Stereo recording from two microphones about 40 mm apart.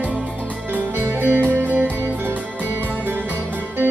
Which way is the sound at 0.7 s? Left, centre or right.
Right.